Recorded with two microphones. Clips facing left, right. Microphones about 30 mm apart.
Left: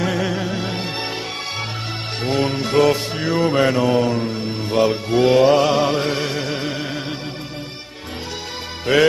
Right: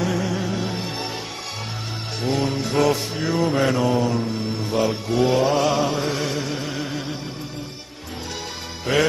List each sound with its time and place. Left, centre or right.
0.0 s music: left
0.4 s music: left
0.7 s music: left
2.2 s music: left
2.8 s music: left
5.2 s music: left
6.8 s music: left
8.9 s music: left